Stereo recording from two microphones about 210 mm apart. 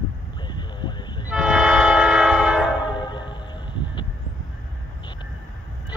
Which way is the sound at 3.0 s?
20° left (ahead or behind).